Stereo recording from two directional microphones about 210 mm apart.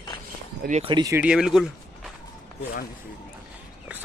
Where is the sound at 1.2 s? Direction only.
5° right (ahead or behind).